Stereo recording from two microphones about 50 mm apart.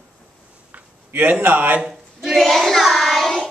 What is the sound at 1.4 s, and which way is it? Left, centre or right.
Speech, right.